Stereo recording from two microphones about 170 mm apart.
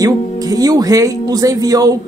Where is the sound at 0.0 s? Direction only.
20° right (ahead or behind).